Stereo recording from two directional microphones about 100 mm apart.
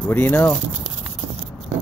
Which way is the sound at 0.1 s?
20° left (ahead or behind).